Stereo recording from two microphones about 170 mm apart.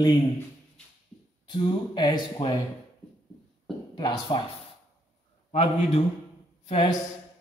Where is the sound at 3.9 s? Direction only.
25° left (ahead or behind).